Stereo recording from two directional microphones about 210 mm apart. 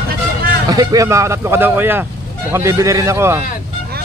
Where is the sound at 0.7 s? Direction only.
15° right (ahead or behind).